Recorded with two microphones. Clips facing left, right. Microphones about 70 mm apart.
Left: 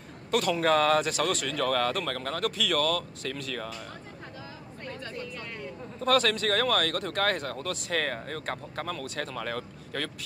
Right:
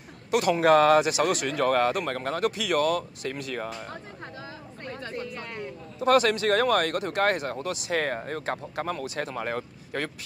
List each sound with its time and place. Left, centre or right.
0.3 s speech: centre
4.8 s a sound: right
5.6 s speech: centre
9.0 s speech: centre